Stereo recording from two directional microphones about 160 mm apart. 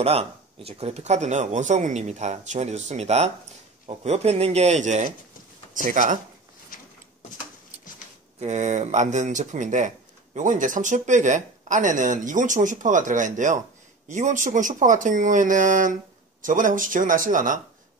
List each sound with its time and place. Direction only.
0.0 s speech: 40° right (ahead or behind)
5.8 s speech: 55° right (ahead or behind)
8.4 s speech: 45° right (ahead or behind)